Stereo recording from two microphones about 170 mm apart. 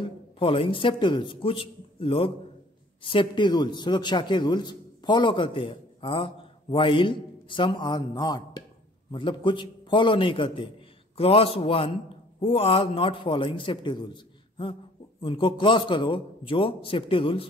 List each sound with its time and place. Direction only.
0.0 s a man's voice: 30° left (ahead or behind)